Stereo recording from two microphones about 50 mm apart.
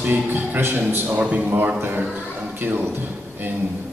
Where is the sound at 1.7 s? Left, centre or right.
Right.